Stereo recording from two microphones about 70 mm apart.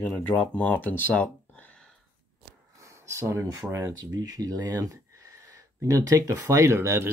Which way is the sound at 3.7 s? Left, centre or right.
Right.